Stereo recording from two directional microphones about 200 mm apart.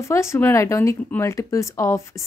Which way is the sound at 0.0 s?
15° left (ahead or behind).